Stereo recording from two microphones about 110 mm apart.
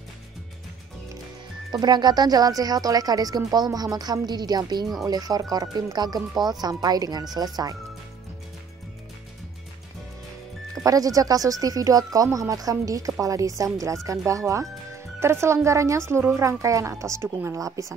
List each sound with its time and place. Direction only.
1.7 s speech: 40° right (ahead or behind)
10.7 s a woman's voice: 30° right (ahead or behind)